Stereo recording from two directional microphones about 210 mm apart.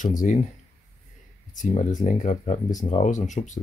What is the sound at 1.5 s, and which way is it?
Speech, 35° left (ahead or behind).